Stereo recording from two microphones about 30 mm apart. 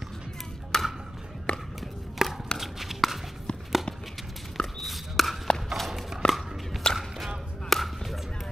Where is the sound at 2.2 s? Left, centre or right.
Centre.